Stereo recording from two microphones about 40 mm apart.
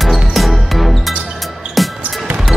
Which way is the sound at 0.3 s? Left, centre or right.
Centre.